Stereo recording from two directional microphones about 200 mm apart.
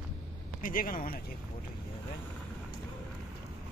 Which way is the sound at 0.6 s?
45° left (ahead or behind).